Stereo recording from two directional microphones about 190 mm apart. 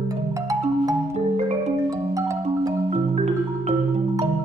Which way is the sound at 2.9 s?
35° right (ahead or behind).